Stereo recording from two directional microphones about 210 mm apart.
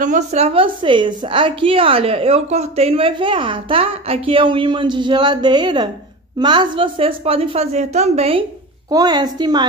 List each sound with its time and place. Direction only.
0.0 s a woman's voice: 35° right (ahead or behind); by 9.7 s 20° right (ahead or behind)